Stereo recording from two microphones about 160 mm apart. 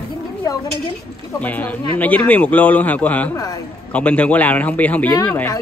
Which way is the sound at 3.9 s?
5° left (ahead or behind).